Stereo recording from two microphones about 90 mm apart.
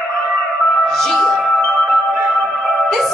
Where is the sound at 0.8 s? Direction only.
5° left (ahead or behind).